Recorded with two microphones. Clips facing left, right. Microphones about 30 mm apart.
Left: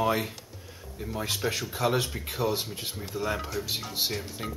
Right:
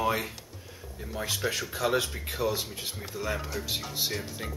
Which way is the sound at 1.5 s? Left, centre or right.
Centre.